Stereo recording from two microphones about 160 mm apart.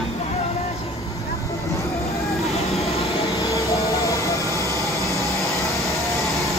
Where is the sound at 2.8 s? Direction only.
40° left (ahead or behind).